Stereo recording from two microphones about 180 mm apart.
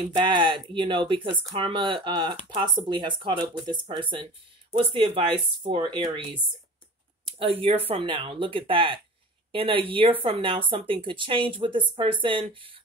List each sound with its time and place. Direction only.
0.1 s speech: 25° right (ahead or behind)
7.3 s speech: 30° right (ahead or behind)